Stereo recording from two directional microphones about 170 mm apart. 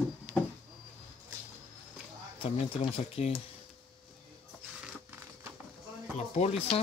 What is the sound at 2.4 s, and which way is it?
Speech, 35° left (ahead or behind).